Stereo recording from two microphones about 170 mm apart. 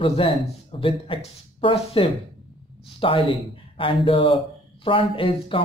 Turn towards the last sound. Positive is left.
turn(degrees=30)  # may be behind; listen again after turning